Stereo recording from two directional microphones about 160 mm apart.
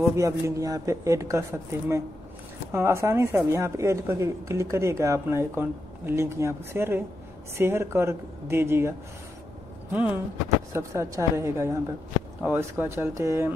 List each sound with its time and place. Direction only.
0.0 s speech: 20° right (ahead or behind)
9.9 s speech: 10° right (ahead or behind)